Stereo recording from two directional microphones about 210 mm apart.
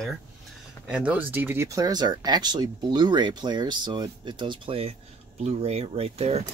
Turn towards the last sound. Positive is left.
turn(degrees=-30)  # may be behind; listen again after turning